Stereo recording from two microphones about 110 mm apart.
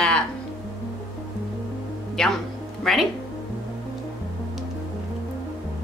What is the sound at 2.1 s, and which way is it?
Music, 5° left (ahead or behind).